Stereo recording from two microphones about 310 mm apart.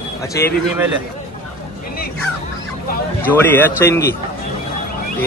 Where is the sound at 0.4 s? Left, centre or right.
Centre.